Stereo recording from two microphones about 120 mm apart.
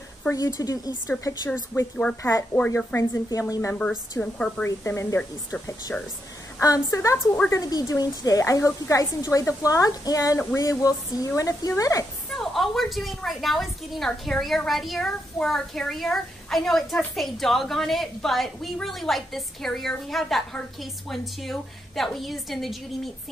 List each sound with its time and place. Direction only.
0.3 s a woman's voice: 30° left (ahead or behind)
2.0 s speech: 10° left (ahead or behind)
2.5 s a woman's voice: 30° left (ahead or behind)
4.2 s speech: 10° left (ahead or behind)
4.6 s a woman's voice: 25° left (ahead or behind)
12.3 s a woman's voice: centre (ahead or behind)